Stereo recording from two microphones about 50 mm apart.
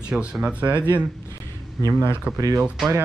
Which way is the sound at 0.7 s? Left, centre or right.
Left.